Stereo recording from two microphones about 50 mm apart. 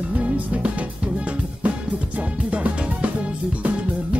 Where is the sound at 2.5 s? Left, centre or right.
Right.